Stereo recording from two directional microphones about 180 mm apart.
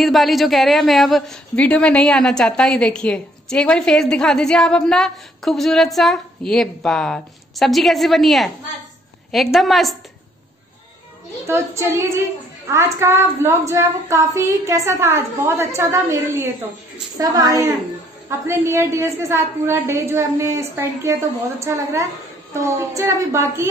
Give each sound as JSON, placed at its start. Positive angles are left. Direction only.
{"t": 0.0, "sound": "a man's voice", "side_deg": 0}
{"t": 11.4, "sound": "a woman's voice", "side_deg": -15}